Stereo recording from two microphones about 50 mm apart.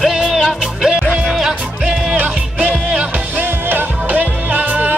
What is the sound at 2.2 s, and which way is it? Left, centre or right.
Music, right.